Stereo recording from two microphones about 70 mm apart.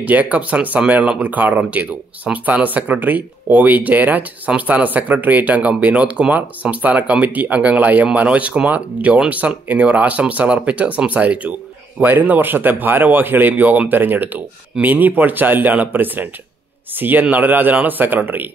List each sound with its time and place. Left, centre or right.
0.0 s speech: right